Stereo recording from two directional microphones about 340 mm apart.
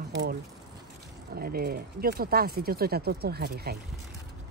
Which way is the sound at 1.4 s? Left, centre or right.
Right.